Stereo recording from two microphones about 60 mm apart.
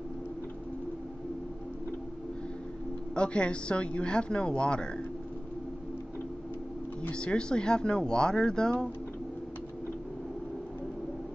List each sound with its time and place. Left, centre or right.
3.2 s speech: centre
7.0 s speech: centre